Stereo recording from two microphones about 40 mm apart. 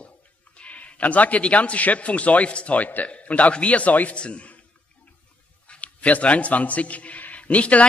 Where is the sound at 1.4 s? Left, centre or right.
Left.